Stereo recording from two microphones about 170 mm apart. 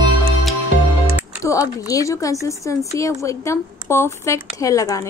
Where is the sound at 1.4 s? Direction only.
20° left (ahead or behind).